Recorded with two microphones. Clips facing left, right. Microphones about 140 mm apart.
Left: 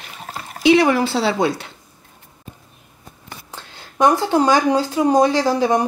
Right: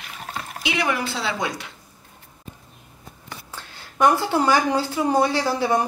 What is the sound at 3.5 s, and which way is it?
Speech, 15° left (ahead or behind).